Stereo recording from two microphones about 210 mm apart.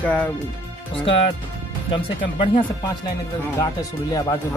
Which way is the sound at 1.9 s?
25° left (ahead or behind).